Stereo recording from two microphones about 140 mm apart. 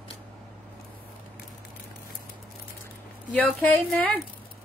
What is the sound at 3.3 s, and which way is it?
Speech, 10° left (ahead or behind).